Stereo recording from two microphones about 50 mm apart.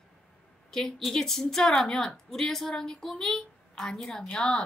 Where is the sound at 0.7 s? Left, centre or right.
Centre.